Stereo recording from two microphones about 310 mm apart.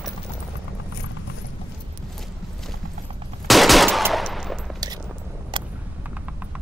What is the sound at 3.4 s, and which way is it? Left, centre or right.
Machine gun, centre.